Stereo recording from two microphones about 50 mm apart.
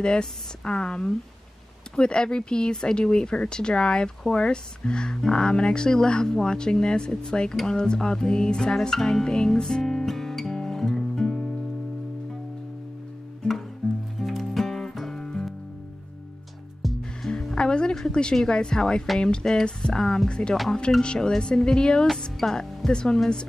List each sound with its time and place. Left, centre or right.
0.0 s a woman's voice: centre
7.5 s music: centre
13.4 s music: centre
16.8 s music: centre
17.6 s a woman's voice: centre